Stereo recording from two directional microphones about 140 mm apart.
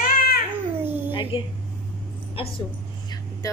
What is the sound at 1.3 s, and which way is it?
Speech, 40° left (ahead or behind).